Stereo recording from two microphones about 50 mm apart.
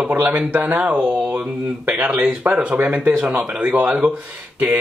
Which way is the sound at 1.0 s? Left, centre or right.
Centre.